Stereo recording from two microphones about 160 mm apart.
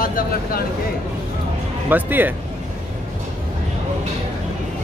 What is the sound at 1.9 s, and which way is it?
Speech, 10° right (ahead or behind).